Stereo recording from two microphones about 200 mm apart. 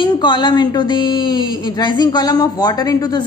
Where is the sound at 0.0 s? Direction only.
20° left (ahead or behind).